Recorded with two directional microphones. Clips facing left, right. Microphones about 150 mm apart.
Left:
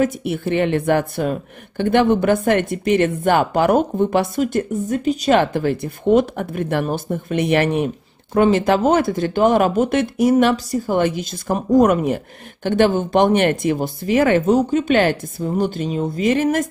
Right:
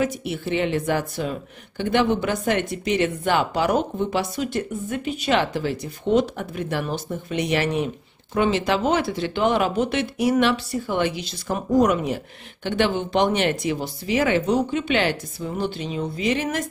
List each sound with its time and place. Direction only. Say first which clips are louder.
0.0 s a woman's voice: left 5 dB; 50° left (ahead or behind)